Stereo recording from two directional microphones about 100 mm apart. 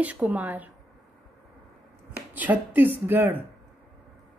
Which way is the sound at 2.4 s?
15° right (ahead or behind).